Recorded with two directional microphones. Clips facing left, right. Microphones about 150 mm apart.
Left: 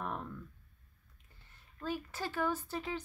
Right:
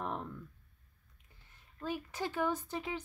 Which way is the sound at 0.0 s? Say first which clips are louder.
Right 1 dB; 20° right (ahead or behind).